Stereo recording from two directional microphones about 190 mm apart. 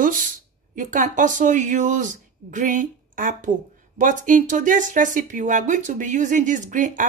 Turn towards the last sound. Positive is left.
turn(degrees=-45)  # may be behind; listen again after turning